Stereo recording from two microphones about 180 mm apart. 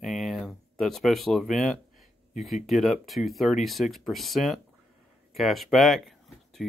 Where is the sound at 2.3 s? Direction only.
Centre (ahead or behind).